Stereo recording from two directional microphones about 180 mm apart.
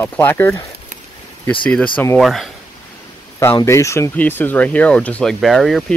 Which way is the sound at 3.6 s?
15° left (ahead or behind).